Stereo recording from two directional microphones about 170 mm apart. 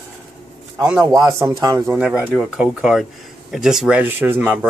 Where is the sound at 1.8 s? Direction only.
5° right (ahead or behind).